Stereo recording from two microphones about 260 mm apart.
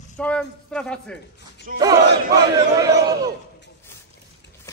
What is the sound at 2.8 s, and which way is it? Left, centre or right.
Speech, centre.